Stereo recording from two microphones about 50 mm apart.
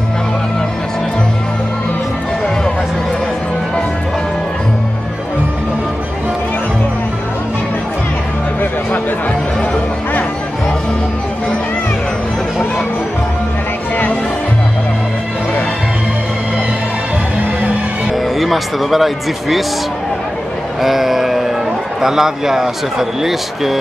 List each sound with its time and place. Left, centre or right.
18.1 s music: centre
20.8 s vehicle: centre
22.0 s speech: centre